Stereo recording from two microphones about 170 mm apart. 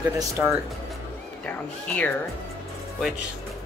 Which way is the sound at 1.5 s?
10° left (ahead or behind).